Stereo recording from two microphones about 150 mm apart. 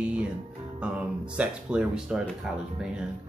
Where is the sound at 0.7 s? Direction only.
5° right (ahead or behind).